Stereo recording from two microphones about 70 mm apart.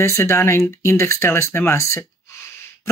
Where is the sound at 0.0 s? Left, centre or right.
Left.